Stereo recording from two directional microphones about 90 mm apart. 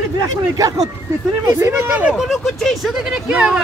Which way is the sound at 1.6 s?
30° right (ahead or behind).